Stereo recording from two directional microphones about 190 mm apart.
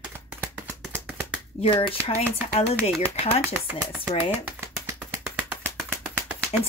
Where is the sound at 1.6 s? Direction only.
30° left (ahead or behind).